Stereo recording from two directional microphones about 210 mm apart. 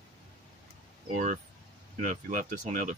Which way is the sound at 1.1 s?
35° right (ahead or behind).